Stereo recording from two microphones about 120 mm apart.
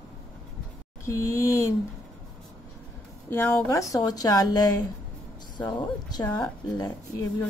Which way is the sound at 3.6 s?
30° left (ahead or behind).